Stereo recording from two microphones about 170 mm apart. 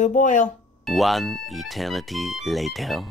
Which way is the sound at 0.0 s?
50° left (ahead or behind).